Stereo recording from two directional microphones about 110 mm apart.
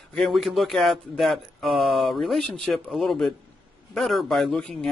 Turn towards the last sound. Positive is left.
turn(degrees=5)  # may be behind; listen again after turning